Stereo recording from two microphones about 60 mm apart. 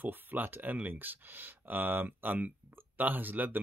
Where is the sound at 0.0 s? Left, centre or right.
Right.